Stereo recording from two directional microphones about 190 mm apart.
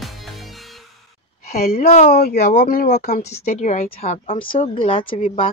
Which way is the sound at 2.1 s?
55° left (ahead or behind).